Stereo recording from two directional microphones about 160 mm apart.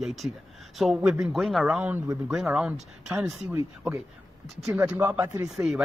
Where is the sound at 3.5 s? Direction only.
15° right (ahead or behind).